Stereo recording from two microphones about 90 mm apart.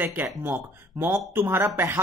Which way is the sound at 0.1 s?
25° right (ahead or behind).